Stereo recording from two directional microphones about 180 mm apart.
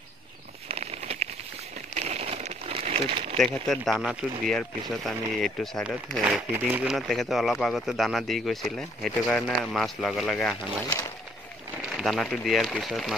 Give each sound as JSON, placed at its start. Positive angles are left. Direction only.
{"t": 0.7, "sound": "a sound", "side_deg": -35}
{"t": 3.6, "sound": "speech", "side_deg": 0}
{"t": 6.2, "sound": "speech", "side_deg": -10}
{"t": 11.9, "sound": "speech", "side_deg": 0}